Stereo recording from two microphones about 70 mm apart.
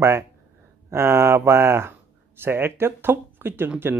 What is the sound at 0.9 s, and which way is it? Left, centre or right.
Speech, right.